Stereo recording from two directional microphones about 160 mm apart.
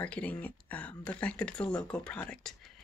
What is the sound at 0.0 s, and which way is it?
Speech, 10° left (ahead or behind).